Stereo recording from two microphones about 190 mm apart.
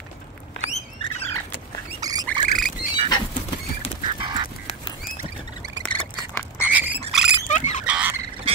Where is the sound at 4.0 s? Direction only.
25° right (ahead or behind).